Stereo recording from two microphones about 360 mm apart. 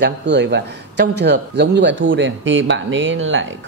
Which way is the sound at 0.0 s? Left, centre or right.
Right.